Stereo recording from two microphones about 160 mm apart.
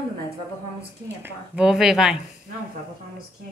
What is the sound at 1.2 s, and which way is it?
A woman's voice, 10° right (ahead or behind).